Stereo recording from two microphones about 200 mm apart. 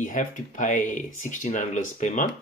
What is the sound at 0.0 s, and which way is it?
Speech, 40° left (ahead or behind).